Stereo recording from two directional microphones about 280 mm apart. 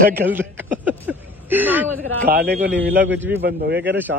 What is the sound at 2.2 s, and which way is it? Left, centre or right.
A man's voice, right.